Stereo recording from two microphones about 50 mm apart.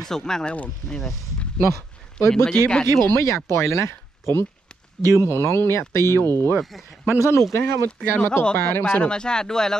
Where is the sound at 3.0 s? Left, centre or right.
Left.